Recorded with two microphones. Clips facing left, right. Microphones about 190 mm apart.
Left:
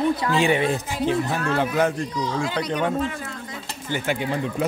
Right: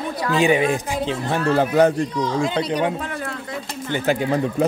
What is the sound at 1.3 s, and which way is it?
Speech, 30° right (ahead or behind).